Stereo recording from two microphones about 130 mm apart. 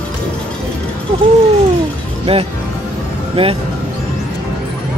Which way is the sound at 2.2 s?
50° right (ahead or behind).